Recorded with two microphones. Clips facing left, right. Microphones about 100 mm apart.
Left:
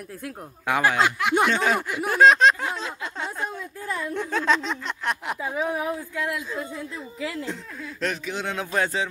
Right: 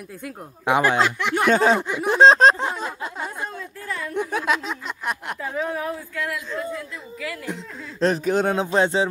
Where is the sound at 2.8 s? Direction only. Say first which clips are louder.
Right 2 dB; 5° right (ahead or behind).